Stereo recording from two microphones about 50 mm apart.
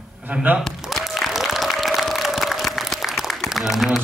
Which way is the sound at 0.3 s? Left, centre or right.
Right.